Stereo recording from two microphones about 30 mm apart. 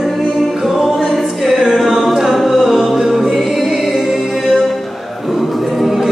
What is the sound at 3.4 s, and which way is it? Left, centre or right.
Music, centre.